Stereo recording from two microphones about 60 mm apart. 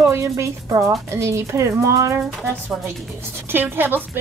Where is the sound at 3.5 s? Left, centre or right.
Right.